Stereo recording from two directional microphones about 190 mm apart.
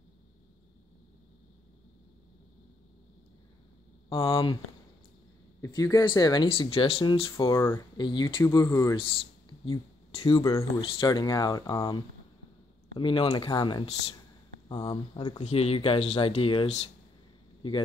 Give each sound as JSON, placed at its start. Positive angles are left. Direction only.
{"t": 4.1, "sound": "speech", "side_deg": 30}
{"t": 5.6, "sound": "speech", "side_deg": 15}
{"t": 8.0, "sound": "speech", "side_deg": 25}
{"t": 8.9, "sound": "speech", "side_deg": 25}
{"t": 10.4, "sound": "speech", "side_deg": 15}
{"t": 15.3, "sound": "speech", "side_deg": 35}